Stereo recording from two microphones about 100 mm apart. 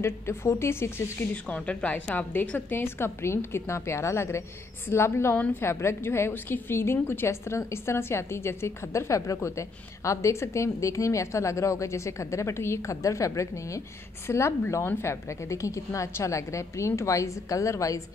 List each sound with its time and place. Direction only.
0.0 s a woman's voice: 25° left (ahead or behind)
1.5 s a woman's voice: 10° left (ahead or behind); by 18.0 s 30° left (ahead or behind)